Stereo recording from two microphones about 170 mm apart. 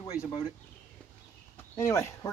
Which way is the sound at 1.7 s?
20° left (ahead or behind).